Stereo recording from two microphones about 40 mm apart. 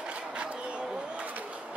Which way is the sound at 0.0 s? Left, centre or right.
Right.